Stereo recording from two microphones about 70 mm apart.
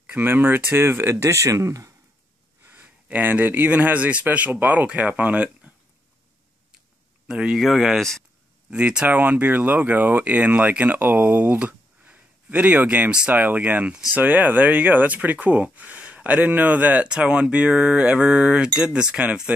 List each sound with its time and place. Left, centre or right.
0.2 s speech: right
2.7 s speech: right
7.2 s speech: centre
8.6 s speech: centre